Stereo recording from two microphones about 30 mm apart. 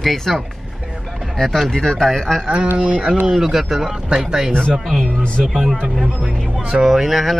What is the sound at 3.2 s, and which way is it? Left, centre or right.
Speech, centre.